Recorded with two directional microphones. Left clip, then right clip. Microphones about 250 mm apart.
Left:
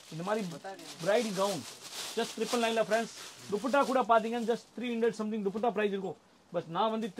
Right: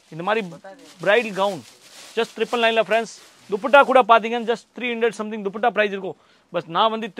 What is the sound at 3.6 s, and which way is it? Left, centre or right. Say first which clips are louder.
Speech: right 15 dB; right.